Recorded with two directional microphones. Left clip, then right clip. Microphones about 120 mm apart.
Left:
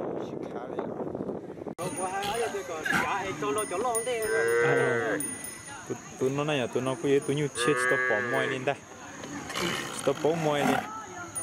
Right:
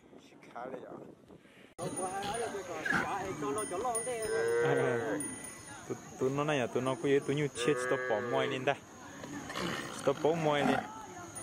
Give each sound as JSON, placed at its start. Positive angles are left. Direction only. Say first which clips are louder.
{"t": 2.2, "sound": "sheep", "louder": "left 6 dB", "side_deg": 5}
{"t": 3.1, "sound": "music", "louder": "left 6 dB", "side_deg": 30}
{"t": 6.2, "sound": "speech", "louder": "left 4 dB", "side_deg": 5}
{"t": 7.5, "sound": "speech", "louder": "left 8 dB", "side_deg": 75}
{"t": 8.0, "sound": "speech", "louder": "left 6 dB", "side_deg": 50}
{"t": 8.7, "sound": "speech", "louder": "left 2 dB", "side_deg": -5}
{"t": 9.5, "sound": "speech", "louder": "left 7 dB", "side_deg": 10}